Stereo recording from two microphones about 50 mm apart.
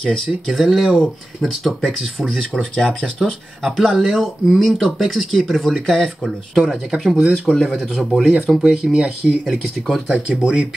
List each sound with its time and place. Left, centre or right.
0.5 s speech: centre
3.6 s speech: centre
7.5 s speech: centre
8.8 s speech: centre
9.8 s speech: centre
10.1 s speech: centre